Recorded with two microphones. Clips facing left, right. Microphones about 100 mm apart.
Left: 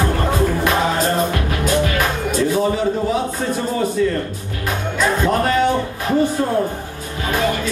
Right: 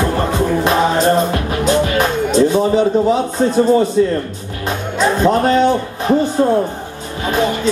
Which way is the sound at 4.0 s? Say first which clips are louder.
Right 4 dB; 30° right (ahead or behind).